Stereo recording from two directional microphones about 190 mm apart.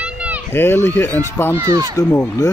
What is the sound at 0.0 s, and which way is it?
Children playing, 5° right (ahead or behind).